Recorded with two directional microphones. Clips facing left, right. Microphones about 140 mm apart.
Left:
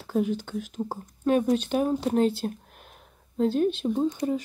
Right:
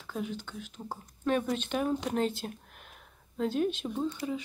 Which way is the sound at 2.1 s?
5° left (ahead or behind).